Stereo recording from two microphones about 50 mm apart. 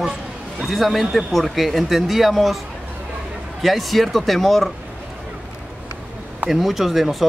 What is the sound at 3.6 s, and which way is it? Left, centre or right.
Speech, centre.